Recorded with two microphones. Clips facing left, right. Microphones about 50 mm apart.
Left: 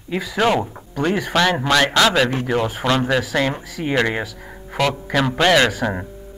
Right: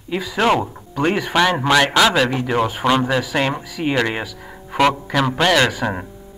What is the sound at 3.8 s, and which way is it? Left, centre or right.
Speech, right.